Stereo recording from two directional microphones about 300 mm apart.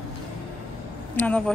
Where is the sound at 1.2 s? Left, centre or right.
Centre.